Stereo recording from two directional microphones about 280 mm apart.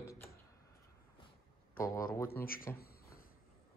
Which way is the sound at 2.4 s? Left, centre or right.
Left.